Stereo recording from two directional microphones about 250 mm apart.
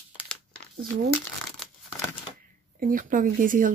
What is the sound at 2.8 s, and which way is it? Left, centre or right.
Speech, right.